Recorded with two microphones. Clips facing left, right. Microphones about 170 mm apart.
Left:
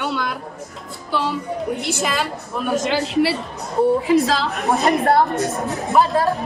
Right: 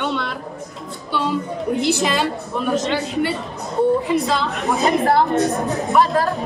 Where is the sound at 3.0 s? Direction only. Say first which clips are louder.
Left 3 dB; 85° left.